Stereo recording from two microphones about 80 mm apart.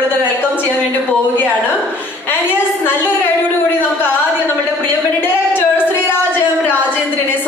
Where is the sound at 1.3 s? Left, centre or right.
Left.